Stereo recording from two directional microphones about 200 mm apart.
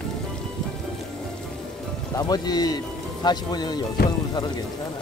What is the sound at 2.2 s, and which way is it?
Speech, 20° left (ahead or behind).